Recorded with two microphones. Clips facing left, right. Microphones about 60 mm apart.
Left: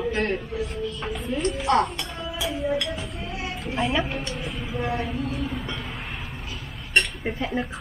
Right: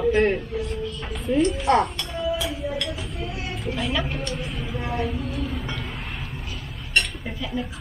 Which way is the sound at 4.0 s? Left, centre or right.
Centre.